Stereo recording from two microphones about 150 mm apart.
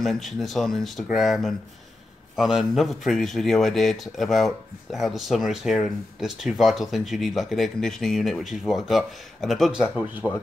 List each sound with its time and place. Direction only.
0.0 s a man's voice: centre (ahead or behind)